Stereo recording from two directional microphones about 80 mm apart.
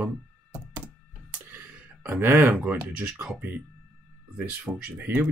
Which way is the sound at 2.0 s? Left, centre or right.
Right.